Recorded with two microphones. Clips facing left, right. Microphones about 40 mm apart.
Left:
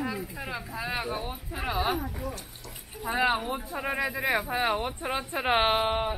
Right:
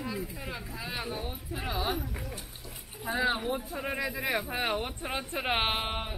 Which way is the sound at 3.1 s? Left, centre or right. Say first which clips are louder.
Left 3 dB; centre.